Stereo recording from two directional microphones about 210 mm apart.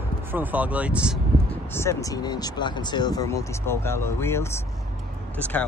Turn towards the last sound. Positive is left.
turn(degrees=5)  # may be behind; listen again after turning